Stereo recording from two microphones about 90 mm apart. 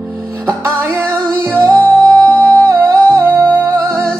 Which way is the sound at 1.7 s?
15° left (ahead or behind).